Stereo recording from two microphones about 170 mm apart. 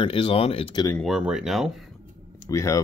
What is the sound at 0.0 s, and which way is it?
Speech, 30° left (ahead or behind).